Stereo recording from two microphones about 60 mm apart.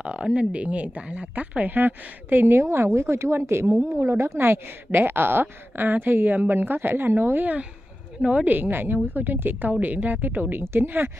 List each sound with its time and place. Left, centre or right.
0.0 s speech: centre; by 7.5 s right
8.2 s speech: centre
8.5 s speech: right